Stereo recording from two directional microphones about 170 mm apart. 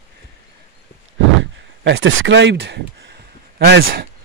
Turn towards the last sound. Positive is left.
turn(degrees=-70)  # may be behind; listen again after turning